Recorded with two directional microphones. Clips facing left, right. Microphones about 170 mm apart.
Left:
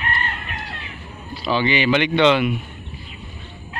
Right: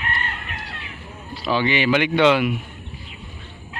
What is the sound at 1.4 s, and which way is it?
Speech, centre (ahead or behind).